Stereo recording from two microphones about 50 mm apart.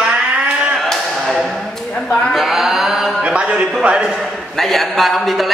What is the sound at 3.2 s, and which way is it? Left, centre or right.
Speech, right.